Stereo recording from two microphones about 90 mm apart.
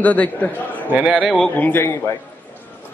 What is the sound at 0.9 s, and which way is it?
Speech, 15° right (ahead or behind).